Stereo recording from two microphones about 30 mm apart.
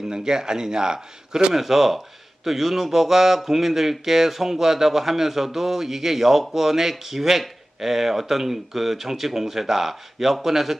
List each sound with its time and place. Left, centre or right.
0.1 s a man's voice: right
1.5 s speech: centre